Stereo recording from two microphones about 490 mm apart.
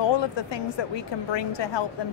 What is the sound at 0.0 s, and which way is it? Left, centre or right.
A woman's voice, left.